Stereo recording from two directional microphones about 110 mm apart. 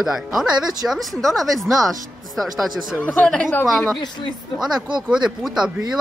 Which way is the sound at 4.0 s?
45° left (ahead or behind).